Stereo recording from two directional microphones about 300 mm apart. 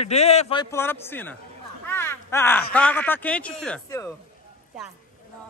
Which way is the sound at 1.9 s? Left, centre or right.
Centre.